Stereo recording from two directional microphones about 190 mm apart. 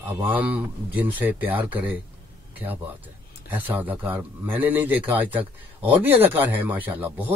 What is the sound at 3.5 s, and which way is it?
A man's voice, 10° right (ahead or behind).